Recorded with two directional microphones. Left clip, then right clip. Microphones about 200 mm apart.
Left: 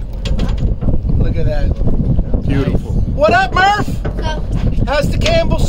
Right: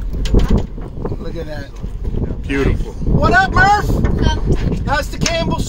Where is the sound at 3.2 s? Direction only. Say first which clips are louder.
Left 1 dB; centre (ahead or behind).